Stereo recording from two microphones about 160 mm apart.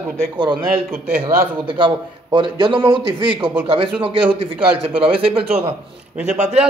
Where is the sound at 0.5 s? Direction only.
70° right (ahead or behind).